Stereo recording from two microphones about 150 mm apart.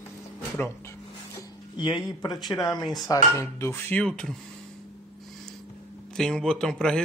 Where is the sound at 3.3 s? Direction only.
15° left (ahead or behind).